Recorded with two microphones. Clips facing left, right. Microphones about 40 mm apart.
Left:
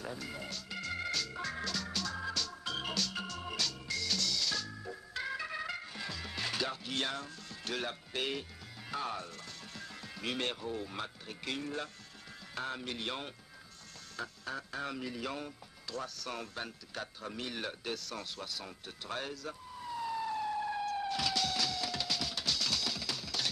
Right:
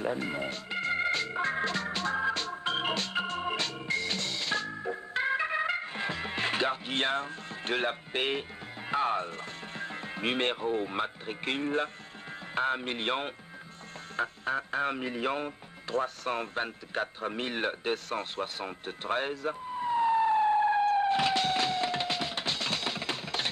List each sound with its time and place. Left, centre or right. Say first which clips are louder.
0.0 s organ: right 10 dB; right
12.5 s speech: right 9 dB; right
14.1 s music: right 10 dB; right